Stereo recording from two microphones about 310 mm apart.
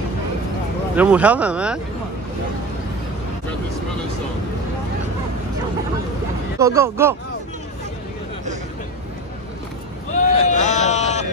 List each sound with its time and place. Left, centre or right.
0.9 s speech: centre
6.6 s speech: centre
10.1 s a sound: left